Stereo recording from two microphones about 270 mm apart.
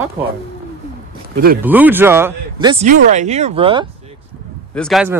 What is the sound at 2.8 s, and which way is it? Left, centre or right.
Speech, right.